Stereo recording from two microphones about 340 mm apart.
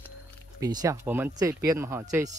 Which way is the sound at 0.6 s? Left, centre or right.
Centre.